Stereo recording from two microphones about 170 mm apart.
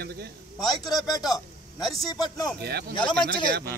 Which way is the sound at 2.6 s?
75° right (ahead or behind).